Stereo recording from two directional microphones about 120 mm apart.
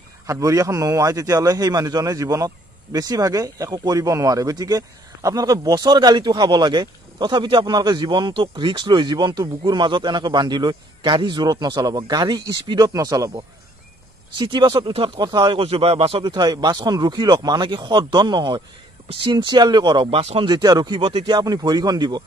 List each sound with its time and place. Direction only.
0.3 s a man's voice: 25° right (ahead or behind)
14.3 s a man's voice: 40° right (ahead or behind); by 20.4 s 55° right (ahead or behind)
20.4 s a man's voice: 35° right (ahead or behind)